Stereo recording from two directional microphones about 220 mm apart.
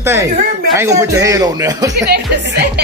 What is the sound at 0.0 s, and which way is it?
Speech, 10° right (ahead or behind).